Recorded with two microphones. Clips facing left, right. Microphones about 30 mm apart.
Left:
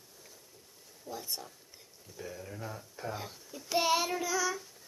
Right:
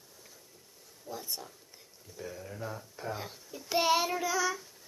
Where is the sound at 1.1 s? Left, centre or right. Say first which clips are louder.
Even; centre.